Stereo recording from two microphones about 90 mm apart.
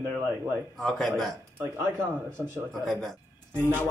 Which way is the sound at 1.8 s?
30° right (ahead or behind).